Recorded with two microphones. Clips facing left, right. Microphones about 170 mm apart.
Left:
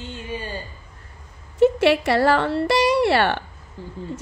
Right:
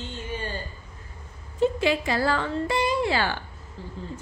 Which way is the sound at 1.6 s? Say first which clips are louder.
Left 7 dB; 70° left (ahead or behind).